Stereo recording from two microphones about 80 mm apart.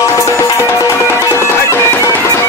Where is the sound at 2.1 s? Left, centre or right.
Left.